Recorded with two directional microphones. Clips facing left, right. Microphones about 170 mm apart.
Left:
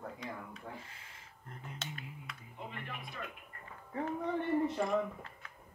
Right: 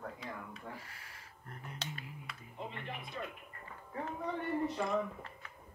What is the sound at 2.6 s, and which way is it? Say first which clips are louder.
Music: even; 25° right (ahead or behind).